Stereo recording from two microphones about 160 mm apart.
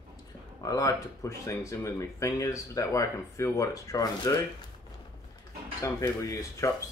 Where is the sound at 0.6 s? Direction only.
20° left (ahead or behind).